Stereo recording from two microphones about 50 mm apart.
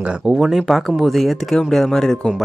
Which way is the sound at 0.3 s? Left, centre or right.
Centre.